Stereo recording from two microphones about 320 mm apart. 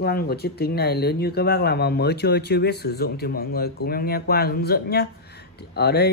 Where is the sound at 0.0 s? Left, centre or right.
Left.